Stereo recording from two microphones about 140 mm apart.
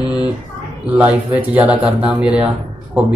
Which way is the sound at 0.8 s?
10° right (ahead or behind).